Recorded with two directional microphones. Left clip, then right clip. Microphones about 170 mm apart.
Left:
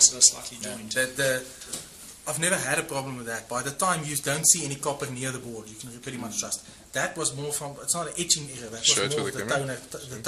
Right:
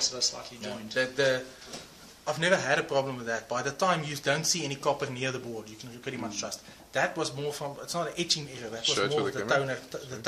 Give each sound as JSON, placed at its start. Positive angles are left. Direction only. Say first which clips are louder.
{"t": 0.9, "sound": "a man's voice", "louder": "left 1 dB", "side_deg": -30}